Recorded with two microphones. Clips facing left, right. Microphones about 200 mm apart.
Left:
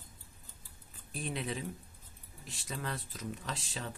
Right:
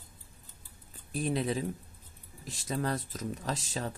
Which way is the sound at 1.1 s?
35° right (ahead or behind).